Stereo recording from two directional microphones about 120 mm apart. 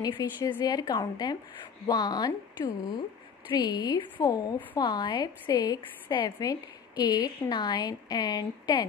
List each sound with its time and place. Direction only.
0.0 s a woman's voice: 35° left (ahead or behind)
6.2 s a woman's voice: 30° left (ahead or behind)